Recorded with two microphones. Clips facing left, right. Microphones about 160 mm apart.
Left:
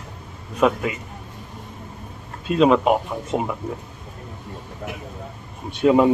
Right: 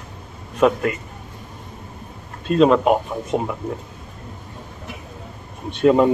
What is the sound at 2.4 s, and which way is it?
Speech, 5° left (ahead or behind).